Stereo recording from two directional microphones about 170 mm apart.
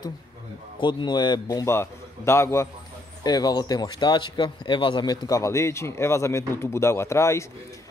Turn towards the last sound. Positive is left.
turn(degrees=15)  # may be behind; listen again after turning